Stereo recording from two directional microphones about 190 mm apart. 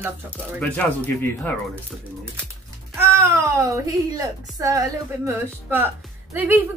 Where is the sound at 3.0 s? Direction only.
15° right (ahead or behind).